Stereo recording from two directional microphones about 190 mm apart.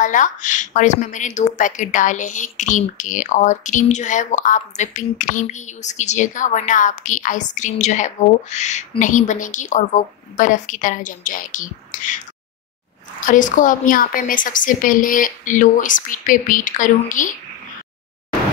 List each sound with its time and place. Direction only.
0.0 s speech: 40° left (ahead or behind)
13.3 s a woman's voice: 45° left (ahead or behind)